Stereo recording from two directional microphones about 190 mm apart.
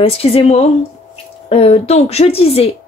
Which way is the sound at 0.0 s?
30° left (ahead or behind).